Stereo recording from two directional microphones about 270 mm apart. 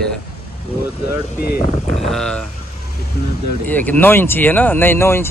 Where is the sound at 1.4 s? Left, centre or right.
Left.